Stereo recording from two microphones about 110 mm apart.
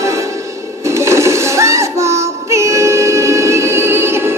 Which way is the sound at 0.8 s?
25° right (ahead or behind).